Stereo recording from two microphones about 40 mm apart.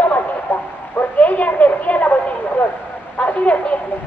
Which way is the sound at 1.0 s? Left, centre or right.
Left.